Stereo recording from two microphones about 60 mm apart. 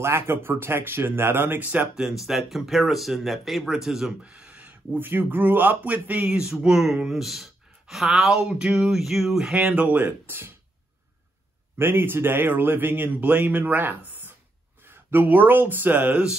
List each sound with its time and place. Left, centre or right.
0.0 s speech: right
1.6 s speech: right
2.0 s speech: centre
4.2 s speech: centre
9.5 s speech: centre; by 10.5 s right
11.8 s speech: right